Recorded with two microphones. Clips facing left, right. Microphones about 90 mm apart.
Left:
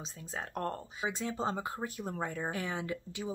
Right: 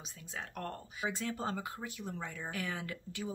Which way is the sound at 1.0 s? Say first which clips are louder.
Left 3 dB; 20° left (ahead or behind).